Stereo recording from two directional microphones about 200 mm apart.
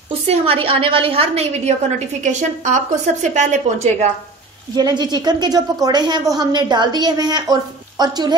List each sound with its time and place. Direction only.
0.3 s a woman's voice: 30° right (ahead or behind)
4.7 s a woman's voice: 20° right (ahead or behind)